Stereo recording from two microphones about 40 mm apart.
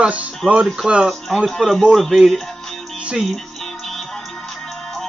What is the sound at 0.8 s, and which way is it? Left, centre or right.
Speech, right.